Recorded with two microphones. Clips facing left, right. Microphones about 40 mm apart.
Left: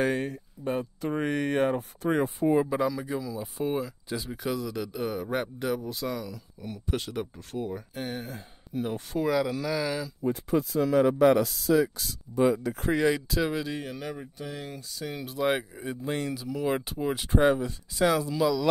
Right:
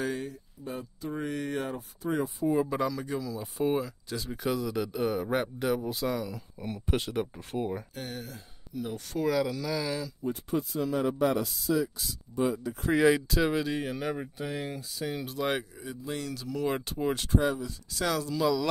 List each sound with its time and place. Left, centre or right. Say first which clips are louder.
0.0 s speech: left 6 dB; left
2.7 s speech: left 2 dB; centre
7.3 s speech: right 1 dB; right
7.9 s speech: left 4 dB; centre
10.9 s speech: left 7 dB; left
12.9 s speech: right 2 dB; centre
15.7 s speech: left 5 dB; left
16.3 s speech: left 2 dB; centre
17.3 s speech: left 9 dB; left
17.9 s speech: left 5 dB; centre